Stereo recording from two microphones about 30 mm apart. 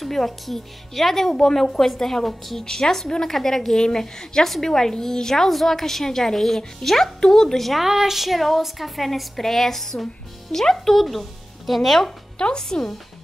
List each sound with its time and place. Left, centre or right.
0.0 s a woman's voice: centre
2.6 s a woman's voice: centre
7.8 s speech: centre
8.2 s a woman's voice: centre
11.0 s speech: centre
12.5 s speech: left